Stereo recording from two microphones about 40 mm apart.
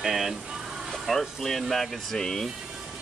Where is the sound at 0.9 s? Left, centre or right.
Centre.